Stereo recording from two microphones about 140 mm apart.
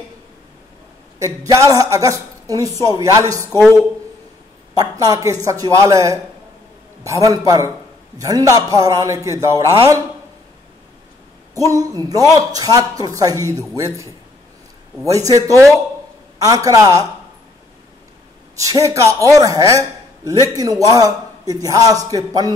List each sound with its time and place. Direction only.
1.2 s speech: 25° right (ahead or behind)
4.7 s speech: 25° right (ahead or behind)
11.5 s speech: 25° right (ahead or behind)
18.6 s speech: 25° right (ahead or behind)